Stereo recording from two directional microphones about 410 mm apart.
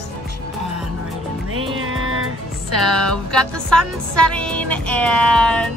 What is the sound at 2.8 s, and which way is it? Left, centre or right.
Music, centre.